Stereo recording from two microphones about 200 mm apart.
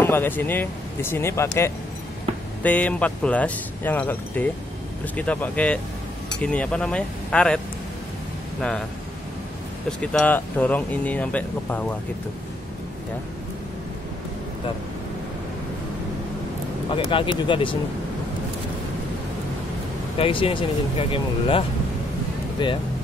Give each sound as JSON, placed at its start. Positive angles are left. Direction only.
{"t": 0.0, "sound": "speech", "side_deg": 10}
{"t": 9.8, "sound": "speech", "side_deg": 5}
{"t": 16.9, "sound": "speech", "side_deg": 25}
{"t": 20.2, "sound": "speech", "side_deg": 25}